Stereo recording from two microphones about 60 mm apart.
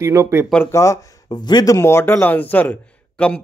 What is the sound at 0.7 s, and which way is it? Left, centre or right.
Speech, left.